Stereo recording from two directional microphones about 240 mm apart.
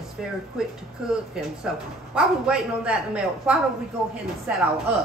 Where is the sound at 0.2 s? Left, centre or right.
Centre.